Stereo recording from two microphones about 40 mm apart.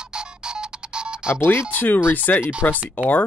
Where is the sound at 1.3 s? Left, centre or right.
Left.